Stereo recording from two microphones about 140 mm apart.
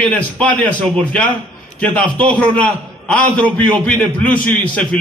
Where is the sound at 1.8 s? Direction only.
10° left (ahead or behind).